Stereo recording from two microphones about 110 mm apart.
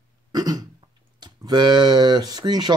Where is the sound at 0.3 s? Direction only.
35° right (ahead or behind).